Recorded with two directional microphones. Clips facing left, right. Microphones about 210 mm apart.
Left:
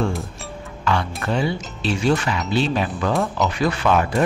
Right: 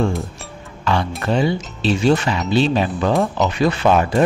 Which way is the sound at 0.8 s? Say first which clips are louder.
Right 3 dB; 30° right (ahead or behind).